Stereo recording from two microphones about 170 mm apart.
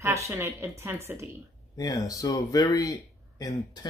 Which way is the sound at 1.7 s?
20° left (ahead or behind).